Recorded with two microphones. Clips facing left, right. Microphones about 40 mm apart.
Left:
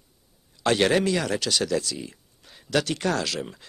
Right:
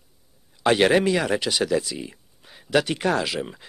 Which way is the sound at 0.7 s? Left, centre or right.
Centre.